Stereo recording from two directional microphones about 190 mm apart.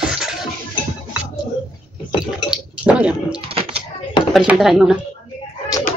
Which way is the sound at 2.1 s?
5° right (ahead or behind).